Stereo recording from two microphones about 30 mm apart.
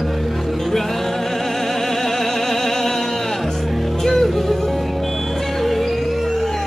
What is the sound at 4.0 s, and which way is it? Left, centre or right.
Music, centre.